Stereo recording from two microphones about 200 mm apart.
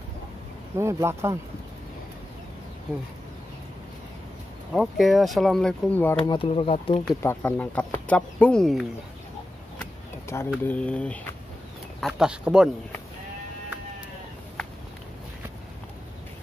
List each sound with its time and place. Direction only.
0.7 s speech: 15° right (ahead or behind)
4.7 s speech: centre (ahead or behind)
6.2 s speech: 25° left (ahead or behind)
7.2 s speech: 10° left (ahead or behind)
10.2 s speech: 10° left (ahead or behind); by 12.6 s 5° right (ahead or behind)